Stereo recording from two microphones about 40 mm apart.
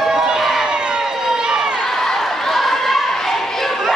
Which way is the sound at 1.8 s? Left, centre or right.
Centre.